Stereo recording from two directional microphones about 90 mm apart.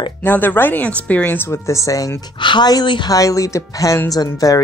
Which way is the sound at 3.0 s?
40° left (ahead or behind).